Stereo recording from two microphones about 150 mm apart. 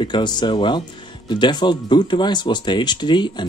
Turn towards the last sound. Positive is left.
turn(degrees=30)  # may be behind; listen again after turning